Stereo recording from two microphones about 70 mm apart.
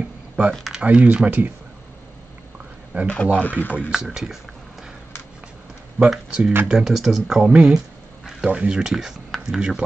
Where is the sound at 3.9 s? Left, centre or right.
Centre.